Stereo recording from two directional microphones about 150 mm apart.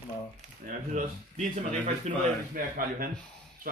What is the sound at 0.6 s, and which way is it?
Speech, 60° right (ahead or behind).